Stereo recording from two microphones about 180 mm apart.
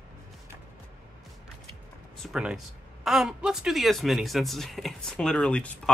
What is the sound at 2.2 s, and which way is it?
Speech, centre (ahead or behind).